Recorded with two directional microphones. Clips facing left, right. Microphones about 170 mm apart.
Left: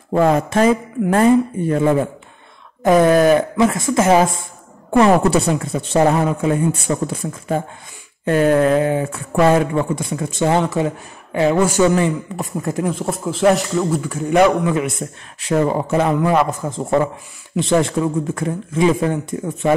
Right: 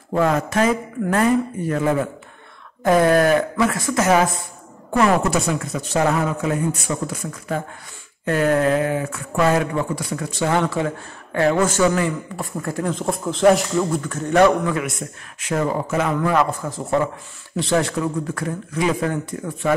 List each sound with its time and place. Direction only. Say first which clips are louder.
0.1 s a man's voice: left 4 dB; 25° left (ahead or behind)
11.8 s speech: left 3 dB; 25° left (ahead or behind)
12.9 s a man's voice: left 1 dB; 5° left (ahead or behind); by 16.1 s 35° left (ahead or behind)
16.1 s speech: left 3 dB; 20° left (ahead or behind)